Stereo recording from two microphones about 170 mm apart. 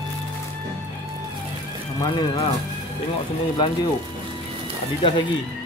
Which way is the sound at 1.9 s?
25° left (ahead or behind).